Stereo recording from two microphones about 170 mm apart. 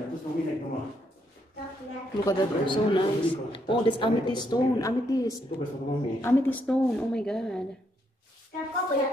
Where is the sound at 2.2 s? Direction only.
25° left (ahead or behind).